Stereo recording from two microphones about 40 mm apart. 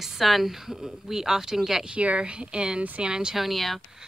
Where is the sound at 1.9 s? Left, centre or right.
Right.